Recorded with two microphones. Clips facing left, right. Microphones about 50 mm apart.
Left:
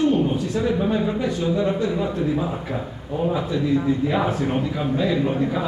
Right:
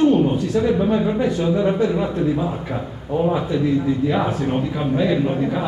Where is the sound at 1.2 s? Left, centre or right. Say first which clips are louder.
Right 3 dB; right.